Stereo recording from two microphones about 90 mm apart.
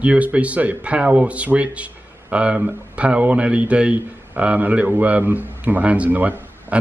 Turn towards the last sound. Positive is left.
turn(degrees=-20)  # may be behind; listen again after turning